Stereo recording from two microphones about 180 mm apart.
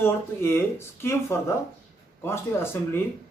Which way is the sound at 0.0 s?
15° left (ahead or behind).